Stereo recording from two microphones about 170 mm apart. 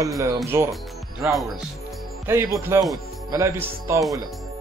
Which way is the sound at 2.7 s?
15° right (ahead or behind).